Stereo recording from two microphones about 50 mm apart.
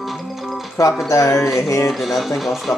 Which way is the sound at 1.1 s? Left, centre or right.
Left.